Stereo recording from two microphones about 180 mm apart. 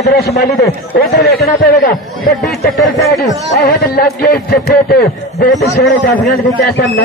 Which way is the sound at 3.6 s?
55° left (ahead or behind).